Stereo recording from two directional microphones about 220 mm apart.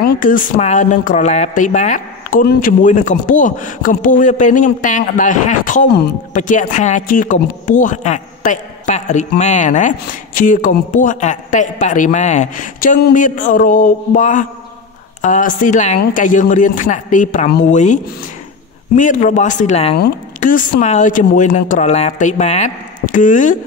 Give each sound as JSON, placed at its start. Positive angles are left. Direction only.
{"t": 0.0, "sound": "a woman's voice", "side_deg": 40}